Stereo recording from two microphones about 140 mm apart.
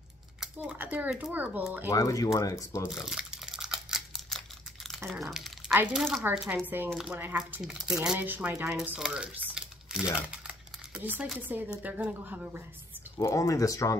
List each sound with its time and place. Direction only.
0.4 s a child's voice: 10° right (ahead or behind)
1.9 s speech: 25° left (ahead or behind)
2.9 s crumpling: 5° right (ahead or behind)
5.9 s a child's voice: centre (ahead or behind)
6.9 s a child's voice: 5° right (ahead or behind)
13.2 s speech: 25° left (ahead or behind)